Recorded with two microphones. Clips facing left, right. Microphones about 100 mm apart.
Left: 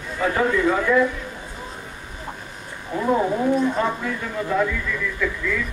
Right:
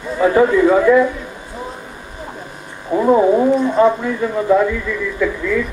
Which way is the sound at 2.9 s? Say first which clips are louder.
Right 9 dB; 35° right (ahead or behind).